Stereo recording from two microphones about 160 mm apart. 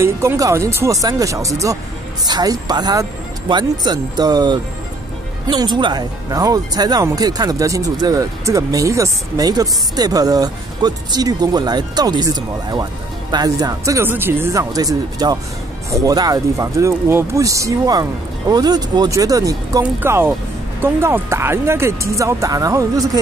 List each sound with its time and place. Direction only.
0.0 s speech: 15° right (ahead or behind)